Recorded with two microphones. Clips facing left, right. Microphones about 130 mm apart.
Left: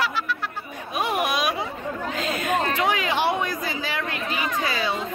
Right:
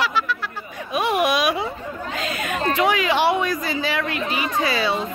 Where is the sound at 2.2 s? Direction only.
90° right.